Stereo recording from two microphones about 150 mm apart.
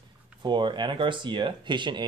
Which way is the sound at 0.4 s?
30° right (ahead or behind).